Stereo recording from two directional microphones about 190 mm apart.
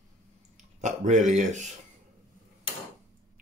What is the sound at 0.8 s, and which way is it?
Speech, 40° right (ahead or behind).